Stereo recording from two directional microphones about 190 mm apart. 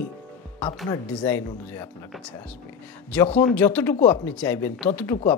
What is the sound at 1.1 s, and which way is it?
Speech, 5° left (ahead or behind).